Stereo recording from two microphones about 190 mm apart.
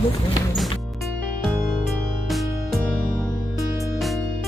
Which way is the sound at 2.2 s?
Centre (ahead or behind).